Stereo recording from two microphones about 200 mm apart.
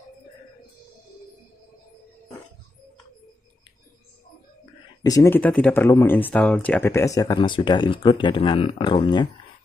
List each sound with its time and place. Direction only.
5.0 s speech: 15° left (ahead or behind)